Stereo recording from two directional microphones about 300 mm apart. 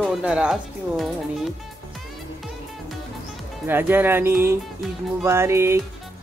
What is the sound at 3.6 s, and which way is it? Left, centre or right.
Speech, centre.